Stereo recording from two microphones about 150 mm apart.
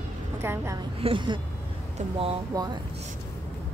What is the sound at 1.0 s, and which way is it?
Speech, 35° right (ahead or behind).